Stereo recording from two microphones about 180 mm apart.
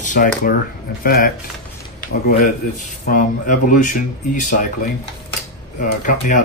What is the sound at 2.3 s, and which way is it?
Speech, 40° left (ahead or behind).